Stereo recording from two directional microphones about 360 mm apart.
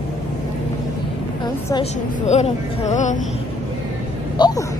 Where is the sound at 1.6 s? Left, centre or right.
Centre.